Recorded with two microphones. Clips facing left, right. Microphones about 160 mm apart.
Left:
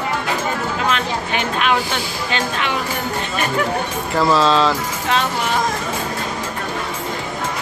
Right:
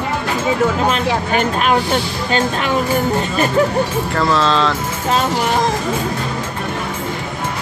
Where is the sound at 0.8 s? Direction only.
40° right (ahead or behind).